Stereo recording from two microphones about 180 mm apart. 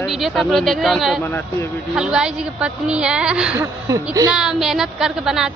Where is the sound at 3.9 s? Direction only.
20° right (ahead or behind).